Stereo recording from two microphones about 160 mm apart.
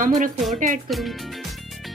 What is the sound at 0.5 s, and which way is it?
Speech, 55° right (ahead or behind).